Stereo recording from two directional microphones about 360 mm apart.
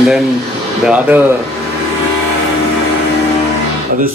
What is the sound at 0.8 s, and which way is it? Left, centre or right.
Speech, centre.